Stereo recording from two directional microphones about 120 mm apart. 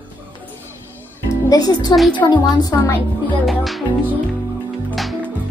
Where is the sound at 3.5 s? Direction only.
Centre (ahead or behind).